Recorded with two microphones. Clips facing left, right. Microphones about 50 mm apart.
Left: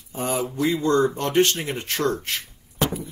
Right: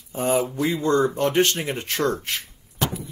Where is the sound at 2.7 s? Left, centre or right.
Centre.